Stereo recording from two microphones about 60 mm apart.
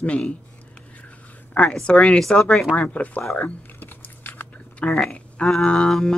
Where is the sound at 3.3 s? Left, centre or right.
Left.